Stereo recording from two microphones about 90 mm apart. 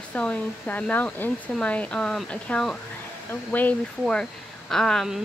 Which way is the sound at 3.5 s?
20° left (ahead or behind).